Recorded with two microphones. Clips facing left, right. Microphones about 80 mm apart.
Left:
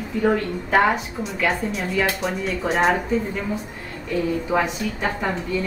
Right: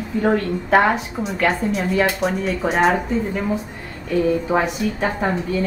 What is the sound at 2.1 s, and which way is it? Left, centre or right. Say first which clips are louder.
Speech: right 3 dB; centre.